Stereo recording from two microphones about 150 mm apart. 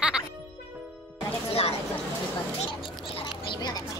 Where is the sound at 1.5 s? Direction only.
45° left (ahead or behind).